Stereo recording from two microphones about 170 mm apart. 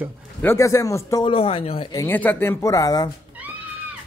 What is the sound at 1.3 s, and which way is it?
Speech, 35° left (ahead or behind).